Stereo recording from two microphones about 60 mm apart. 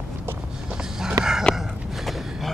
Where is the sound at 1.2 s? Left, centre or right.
Right.